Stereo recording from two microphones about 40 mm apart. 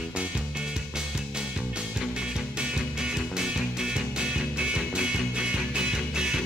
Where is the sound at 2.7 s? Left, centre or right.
Centre.